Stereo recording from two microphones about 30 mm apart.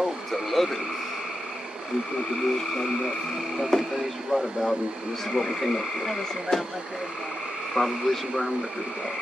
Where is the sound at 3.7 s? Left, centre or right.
Centre.